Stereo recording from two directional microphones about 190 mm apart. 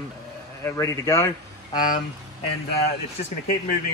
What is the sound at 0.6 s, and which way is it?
A man's voice, 15° left (ahead or behind).